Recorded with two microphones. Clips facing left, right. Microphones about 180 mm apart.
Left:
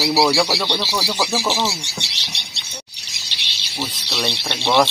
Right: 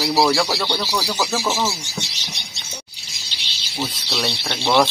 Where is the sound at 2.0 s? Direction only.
70° left (ahead or behind).